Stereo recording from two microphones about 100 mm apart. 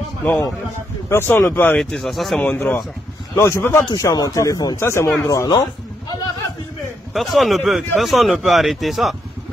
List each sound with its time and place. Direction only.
1.0 s speech: 25° left (ahead or behind)
1.8 s speech: 5° left (ahead or behind)
2.4 s speech: 15° left (ahead or behind)
3.3 s speech: 25° left (ahead or behind)
3.9 s speech: 40° left (ahead or behind)
4.7 s speech: 30° left (ahead or behind)
7.2 s speech: centre (ahead or behind)